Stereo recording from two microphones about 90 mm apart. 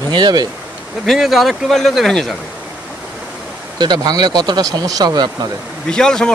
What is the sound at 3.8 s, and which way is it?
Speech, 50° right (ahead or behind).